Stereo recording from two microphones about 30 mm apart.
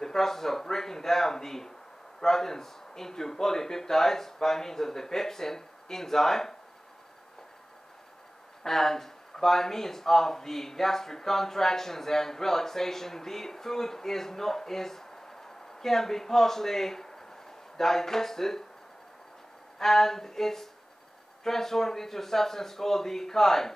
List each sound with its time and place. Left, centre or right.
0.0 s speech: centre
8.6 s speech: centre
19.8 s speech: centre